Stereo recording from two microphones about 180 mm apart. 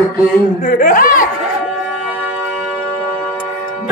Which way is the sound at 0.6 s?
50° left (ahead or behind).